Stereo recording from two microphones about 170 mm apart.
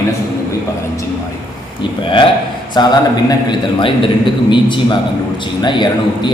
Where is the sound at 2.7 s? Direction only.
25° left (ahead or behind).